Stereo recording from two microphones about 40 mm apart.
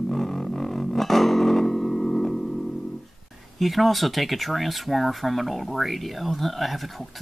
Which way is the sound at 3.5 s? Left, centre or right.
Centre.